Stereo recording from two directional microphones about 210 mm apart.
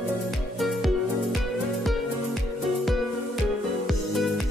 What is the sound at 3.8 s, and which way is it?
Music, centre (ahead or behind).